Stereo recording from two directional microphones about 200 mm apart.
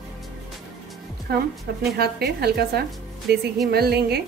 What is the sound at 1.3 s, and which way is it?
A woman's voice, 55° right (ahead or behind).